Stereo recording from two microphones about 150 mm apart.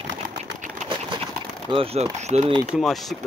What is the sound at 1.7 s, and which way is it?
Speech, 40° right (ahead or behind).